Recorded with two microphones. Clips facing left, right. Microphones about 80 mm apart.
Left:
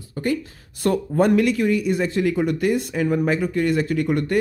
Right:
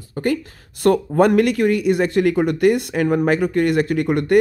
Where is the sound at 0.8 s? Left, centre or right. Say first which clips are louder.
Right 4 dB; right.